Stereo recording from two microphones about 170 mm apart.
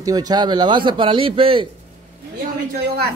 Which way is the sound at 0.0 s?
20° right (ahead or behind).